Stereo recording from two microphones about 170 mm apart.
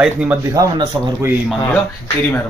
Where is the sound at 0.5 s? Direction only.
20° right (ahead or behind).